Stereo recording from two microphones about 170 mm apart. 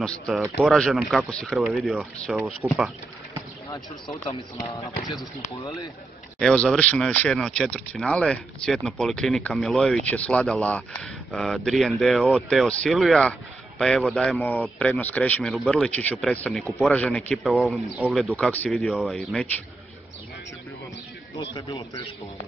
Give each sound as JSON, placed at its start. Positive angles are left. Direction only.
{"t": 0.0, "sound": "speech", "side_deg": 0}
{"t": 3.7, "sound": "speech", "side_deg": 15}
{"t": 6.4, "sound": "speech", "side_deg": 5}
{"t": 18.3, "sound": "speech", "side_deg": 10}
{"t": 21.4, "sound": "speech", "side_deg": 30}